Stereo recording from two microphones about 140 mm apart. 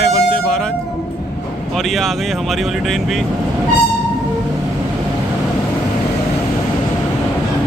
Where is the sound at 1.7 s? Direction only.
Centre (ahead or behind).